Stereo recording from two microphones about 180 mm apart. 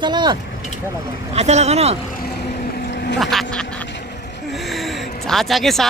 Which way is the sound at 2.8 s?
70° left (ahead or behind).